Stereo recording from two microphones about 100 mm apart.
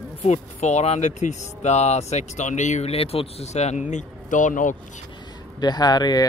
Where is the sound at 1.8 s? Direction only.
90° left.